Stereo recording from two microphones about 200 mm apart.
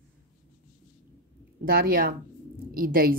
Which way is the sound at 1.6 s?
50° right (ahead or behind).